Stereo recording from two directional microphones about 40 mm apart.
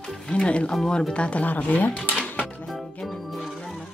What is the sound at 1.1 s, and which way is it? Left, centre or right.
Speech, left.